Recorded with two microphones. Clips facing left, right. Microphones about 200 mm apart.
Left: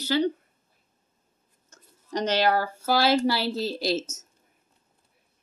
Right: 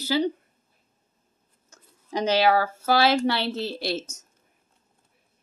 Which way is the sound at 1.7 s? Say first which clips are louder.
Even; 10° right (ahead or behind).